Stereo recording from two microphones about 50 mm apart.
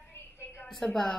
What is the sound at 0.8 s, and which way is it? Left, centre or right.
Mantra, centre.